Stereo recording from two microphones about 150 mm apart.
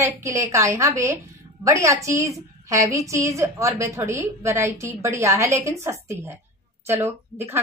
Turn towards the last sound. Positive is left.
turn(degrees=-15)  # may be behind; listen again after turning